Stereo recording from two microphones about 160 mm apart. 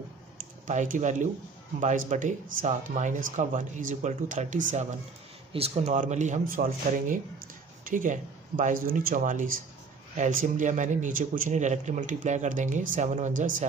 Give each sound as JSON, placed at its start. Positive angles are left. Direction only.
{"t": 0.7, "sound": "speech", "side_deg": -50}
{"t": 5.5, "sound": "speech", "side_deg": -40}